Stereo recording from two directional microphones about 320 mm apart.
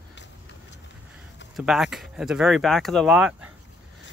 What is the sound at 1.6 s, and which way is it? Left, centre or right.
Speech, centre.